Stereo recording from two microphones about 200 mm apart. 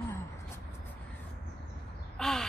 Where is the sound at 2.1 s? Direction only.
5° left (ahead or behind).